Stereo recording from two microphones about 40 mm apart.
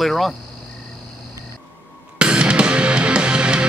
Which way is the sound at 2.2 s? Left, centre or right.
Right.